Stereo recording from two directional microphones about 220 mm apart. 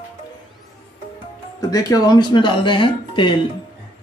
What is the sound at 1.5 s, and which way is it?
Speech, 15° left (ahead or behind).